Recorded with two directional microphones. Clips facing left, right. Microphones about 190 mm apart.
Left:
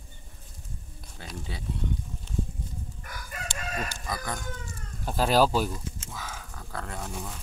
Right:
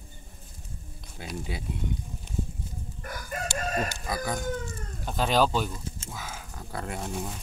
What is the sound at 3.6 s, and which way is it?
Chicken, 45° right (ahead or behind).